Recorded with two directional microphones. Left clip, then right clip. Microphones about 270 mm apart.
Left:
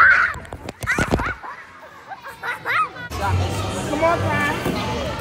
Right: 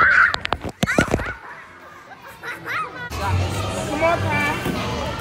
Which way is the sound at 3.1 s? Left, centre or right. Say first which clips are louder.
Left 1 dB; centre.